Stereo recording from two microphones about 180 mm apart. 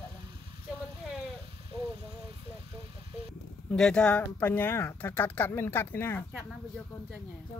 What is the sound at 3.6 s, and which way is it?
Speech, 5° left (ahead or behind).